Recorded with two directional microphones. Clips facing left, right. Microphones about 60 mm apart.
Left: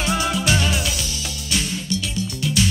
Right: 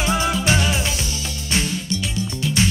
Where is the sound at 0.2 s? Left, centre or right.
Right.